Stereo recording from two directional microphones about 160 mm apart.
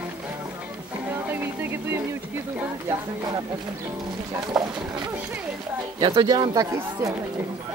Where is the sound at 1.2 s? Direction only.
15° right (ahead or behind).